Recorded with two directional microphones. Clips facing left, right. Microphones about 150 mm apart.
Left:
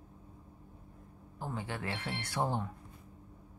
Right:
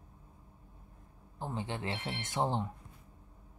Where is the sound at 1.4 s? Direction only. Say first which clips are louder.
Right 1 dB; 20° right (ahead or behind).